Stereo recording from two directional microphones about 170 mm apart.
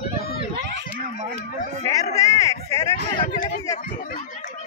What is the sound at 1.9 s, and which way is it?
Speech, 20° left (ahead or behind).